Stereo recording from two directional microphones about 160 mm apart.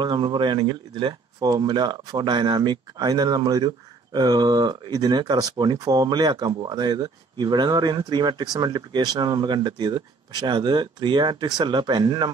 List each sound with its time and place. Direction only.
0.0 s speech: 30° right (ahead or behind)